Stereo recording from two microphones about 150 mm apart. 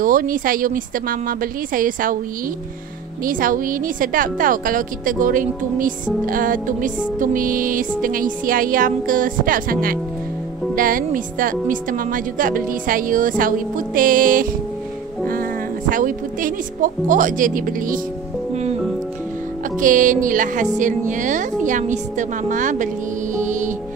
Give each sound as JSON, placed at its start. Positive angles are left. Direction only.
{"t": 0.0, "sound": "a woman's voice", "side_deg": -65}
{"t": 3.3, "sound": "a woman's voice", "side_deg": -65}
{"t": 15.9, "sound": "a woman's voice", "side_deg": -65}
{"t": 18.5, "sound": "music", "side_deg": -45}
{"t": 19.8, "sound": "a woman's voice", "side_deg": -60}
{"t": 23.4, "sound": "music", "side_deg": -55}